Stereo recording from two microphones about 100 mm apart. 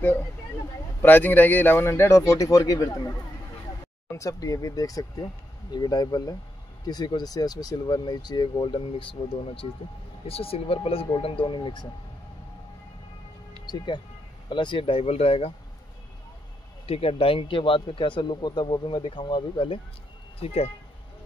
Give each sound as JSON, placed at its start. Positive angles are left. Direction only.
{"t": 1.0, "sound": "a man's voice", "side_deg": 20}
{"t": 4.1, "sound": "speech", "side_deg": 35}
{"t": 10.2, "sound": "speech", "side_deg": 75}
{"t": 11.1, "sound": "speech", "side_deg": 60}
{"t": 13.7, "sound": "speech", "side_deg": 45}
{"t": 16.8, "sound": "speech", "side_deg": 80}
{"t": 20.3, "sound": "speech", "side_deg": 90}